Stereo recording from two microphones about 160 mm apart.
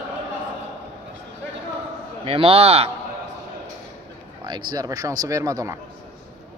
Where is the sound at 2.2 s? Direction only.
35° right (ahead or behind).